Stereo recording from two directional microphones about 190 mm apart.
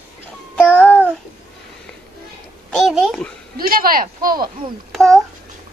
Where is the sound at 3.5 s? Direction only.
50° right (ahead or behind).